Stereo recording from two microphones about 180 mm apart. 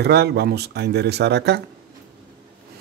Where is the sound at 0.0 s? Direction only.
65° right (ahead or behind).